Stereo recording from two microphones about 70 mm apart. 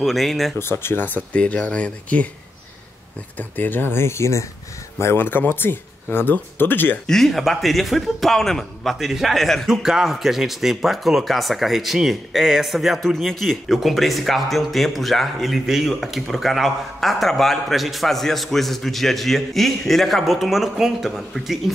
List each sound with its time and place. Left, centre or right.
0.0 s speech: centre
0.6 s speech: left; by 2.2 s centre
3.3 s speech: left
7.1 s speech: centre